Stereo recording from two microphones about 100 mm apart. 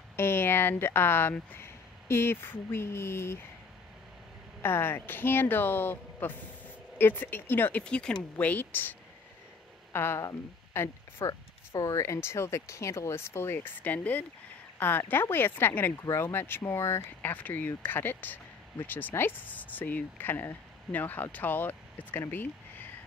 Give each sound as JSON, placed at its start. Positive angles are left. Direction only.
{"t": 0.1, "sound": "speech", "side_deg": 25}
{"t": 4.6, "sound": "speech", "side_deg": 20}
{"t": 9.9, "sound": "speech", "side_deg": 25}